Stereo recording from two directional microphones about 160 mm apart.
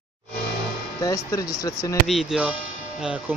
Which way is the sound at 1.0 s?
20° left (ahead or behind).